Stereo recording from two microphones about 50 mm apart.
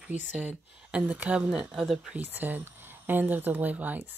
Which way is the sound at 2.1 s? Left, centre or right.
Right.